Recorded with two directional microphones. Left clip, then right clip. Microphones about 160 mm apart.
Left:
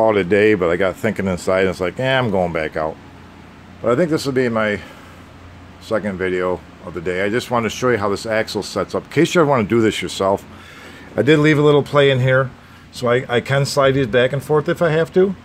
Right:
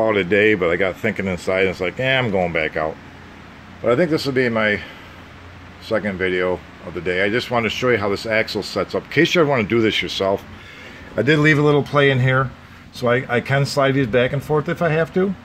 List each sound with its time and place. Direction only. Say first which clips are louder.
0.0 s speech: left 2 dB; 20° left (ahead or behind)
5.9 s speech: even; 10° left (ahead or behind); by 10.4 s 30° left (ahead or behind)
11.1 s speech: left 2 dB; 10° left (ahead or behind)